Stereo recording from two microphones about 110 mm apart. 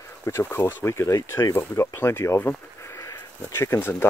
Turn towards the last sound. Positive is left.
turn(degrees=20)  # may be behind; listen again after turning